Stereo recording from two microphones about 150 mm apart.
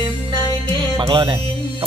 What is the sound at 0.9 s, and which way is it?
Speech, 30° right (ahead or behind).